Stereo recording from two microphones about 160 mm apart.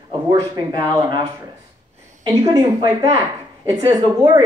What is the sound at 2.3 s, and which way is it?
Speech, 25° right (ahead or behind).